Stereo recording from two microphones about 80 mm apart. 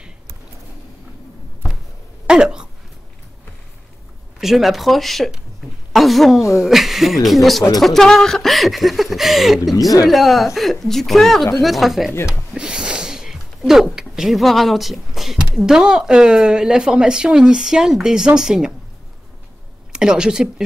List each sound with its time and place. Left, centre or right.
2.2 s a sound: centre
4.4 s a woman's voice: centre
9.8 s speech: left
10.0 s speech: centre
12.3 s a sound: centre
13.9 s speech: centre
19.9 s speech: centre